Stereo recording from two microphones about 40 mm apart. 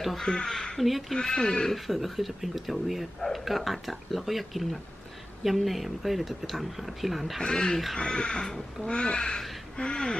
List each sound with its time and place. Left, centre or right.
0.2 s speech: centre
0.7 s speech: centre
1.1 s speech: centre
1.7 s speech: centre
7.3 s speech: centre